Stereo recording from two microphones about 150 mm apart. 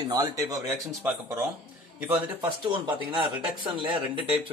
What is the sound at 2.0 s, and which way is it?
Speech, 10° right (ahead or behind).